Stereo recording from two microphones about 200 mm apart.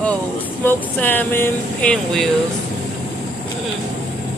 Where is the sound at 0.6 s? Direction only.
10° left (ahead or behind).